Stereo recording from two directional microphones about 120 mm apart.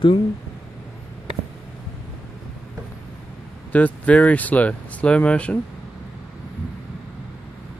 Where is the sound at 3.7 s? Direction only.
10° left (ahead or behind).